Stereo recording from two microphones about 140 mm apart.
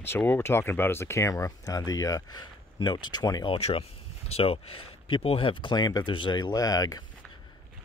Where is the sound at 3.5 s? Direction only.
45° left (ahead or behind); by 7.0 s 25° left (ahead or behind).